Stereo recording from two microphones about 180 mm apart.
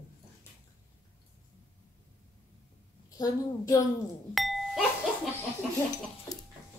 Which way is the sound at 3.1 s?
20° left (ahead or behind).